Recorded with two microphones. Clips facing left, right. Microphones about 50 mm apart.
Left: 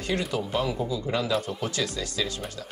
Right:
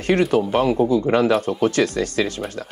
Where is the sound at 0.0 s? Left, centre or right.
Right.